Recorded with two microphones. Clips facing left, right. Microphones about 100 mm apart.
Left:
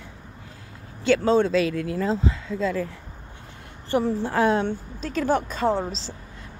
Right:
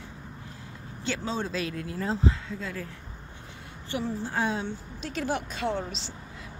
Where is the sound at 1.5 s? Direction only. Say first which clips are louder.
Left 10 dB; 90° left.